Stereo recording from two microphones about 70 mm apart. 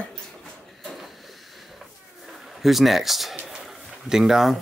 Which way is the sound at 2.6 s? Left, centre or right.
Centre.